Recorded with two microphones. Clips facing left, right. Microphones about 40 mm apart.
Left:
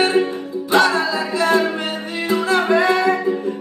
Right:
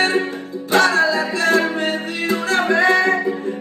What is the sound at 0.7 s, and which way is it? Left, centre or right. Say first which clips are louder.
Music: right 1 dB; right.